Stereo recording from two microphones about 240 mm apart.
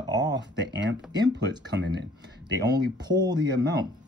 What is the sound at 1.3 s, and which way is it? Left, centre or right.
Speech, right.